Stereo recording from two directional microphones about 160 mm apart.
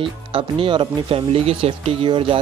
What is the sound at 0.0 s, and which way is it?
Speech, 35° right (ahead or behind).